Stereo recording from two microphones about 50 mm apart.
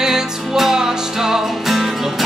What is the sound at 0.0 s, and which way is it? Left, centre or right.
Music, centre.